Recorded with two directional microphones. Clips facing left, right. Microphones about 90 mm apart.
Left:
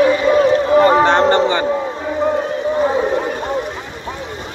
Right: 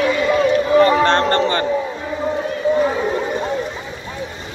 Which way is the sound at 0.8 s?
15° left (ahead or behind).